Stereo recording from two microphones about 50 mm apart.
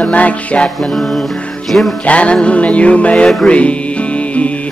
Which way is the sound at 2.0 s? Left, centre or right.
Left.